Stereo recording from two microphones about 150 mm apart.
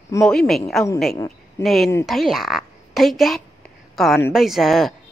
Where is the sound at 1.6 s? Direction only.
Centre (ahead or behind).